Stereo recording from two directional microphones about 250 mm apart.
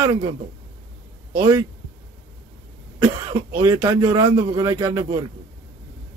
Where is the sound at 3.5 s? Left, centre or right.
Centre.